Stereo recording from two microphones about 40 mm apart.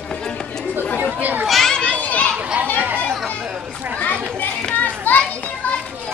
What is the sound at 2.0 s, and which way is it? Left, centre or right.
Children playing, left.